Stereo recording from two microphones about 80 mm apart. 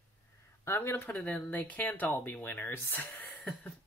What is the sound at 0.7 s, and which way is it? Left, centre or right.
Speech, left.